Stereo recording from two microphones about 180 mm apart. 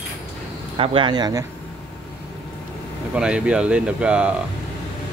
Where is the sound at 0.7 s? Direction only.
30° right (ahead or behind).